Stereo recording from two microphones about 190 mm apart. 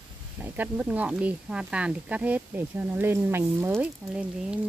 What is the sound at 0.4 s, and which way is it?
Speech, 10° right (ahead or behind).